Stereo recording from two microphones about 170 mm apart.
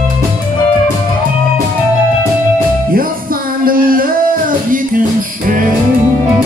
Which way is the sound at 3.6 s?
55° right (ahead or behind).